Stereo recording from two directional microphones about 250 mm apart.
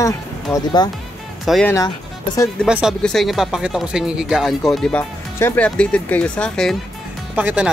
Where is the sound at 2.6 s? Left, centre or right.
Centre.